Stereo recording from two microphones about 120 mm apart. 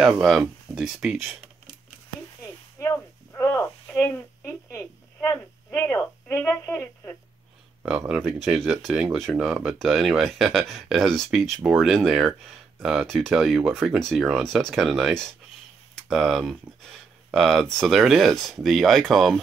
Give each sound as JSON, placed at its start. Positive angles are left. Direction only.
{"t": 0.0, "sound": "speech", "side_deg": 0}
{"t": 2.4, "sound": "a sound", "side_deg": 25}
{"t": 7.8, "sound": "speech", "side_deg": -15}
{"t": 8.1, "sound": "speech", "side_deg": 0}